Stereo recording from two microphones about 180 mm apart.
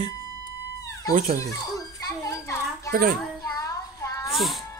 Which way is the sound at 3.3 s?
20° left (ahead or behind).